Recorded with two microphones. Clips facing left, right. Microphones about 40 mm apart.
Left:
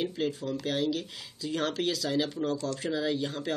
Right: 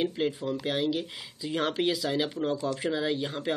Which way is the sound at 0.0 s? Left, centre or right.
Centre.